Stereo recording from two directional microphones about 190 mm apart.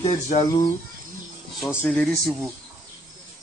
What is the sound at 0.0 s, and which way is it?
Speech, 35° left (ahead or behind).